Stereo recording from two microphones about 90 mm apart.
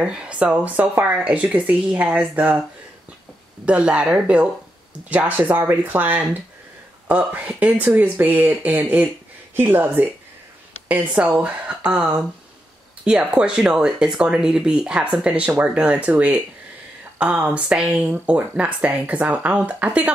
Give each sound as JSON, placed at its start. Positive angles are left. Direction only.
{"t": 0.0, "sound": "speech", "side_deg": -10}
{"t": 3.6, "sound": "speech", "side_deg": -15}